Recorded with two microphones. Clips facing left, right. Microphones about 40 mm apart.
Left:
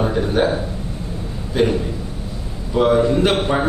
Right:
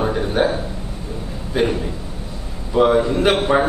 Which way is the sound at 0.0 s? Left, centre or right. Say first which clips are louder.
Left 1 dB; centre.